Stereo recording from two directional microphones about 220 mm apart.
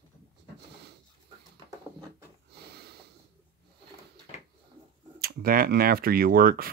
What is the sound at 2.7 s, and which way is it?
Sniff, 45° right (ahead or behind).